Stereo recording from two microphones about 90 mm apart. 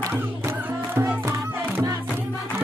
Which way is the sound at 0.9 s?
20° right (ahead or behind).